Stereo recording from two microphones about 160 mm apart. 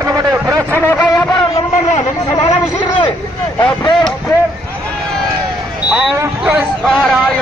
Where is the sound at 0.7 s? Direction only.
15° left (ahead or behind).